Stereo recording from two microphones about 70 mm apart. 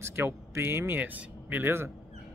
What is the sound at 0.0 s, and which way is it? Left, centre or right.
Speech, right.